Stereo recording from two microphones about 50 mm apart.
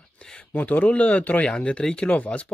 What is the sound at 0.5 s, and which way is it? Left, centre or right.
Speech, left.